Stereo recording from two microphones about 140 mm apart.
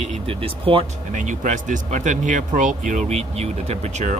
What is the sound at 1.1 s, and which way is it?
Speech, 65° right (ahead or behind).